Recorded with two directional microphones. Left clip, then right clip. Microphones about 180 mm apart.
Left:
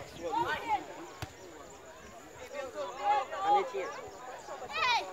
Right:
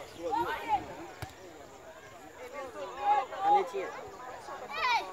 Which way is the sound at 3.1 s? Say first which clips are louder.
Right 2 dB; 50° right (ahead or behind).